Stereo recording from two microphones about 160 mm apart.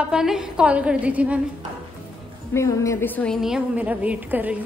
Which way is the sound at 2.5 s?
20° left (ahead or behind).